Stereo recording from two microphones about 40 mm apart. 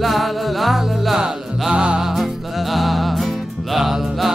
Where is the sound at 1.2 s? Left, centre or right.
Centre.